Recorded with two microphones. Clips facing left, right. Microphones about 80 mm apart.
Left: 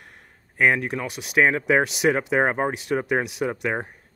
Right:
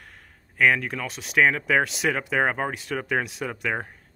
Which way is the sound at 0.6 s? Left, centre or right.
Left.